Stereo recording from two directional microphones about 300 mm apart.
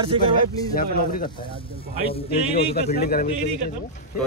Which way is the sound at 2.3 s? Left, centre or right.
Left.